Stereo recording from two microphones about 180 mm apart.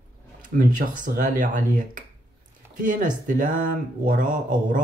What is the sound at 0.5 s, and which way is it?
Speech, 50° right (ahead or behind).